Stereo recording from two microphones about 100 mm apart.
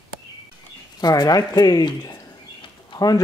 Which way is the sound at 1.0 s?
40° left (ahead or behind).